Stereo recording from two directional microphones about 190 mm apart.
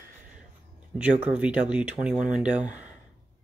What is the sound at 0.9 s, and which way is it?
Speech, 5° right (ahead or behind).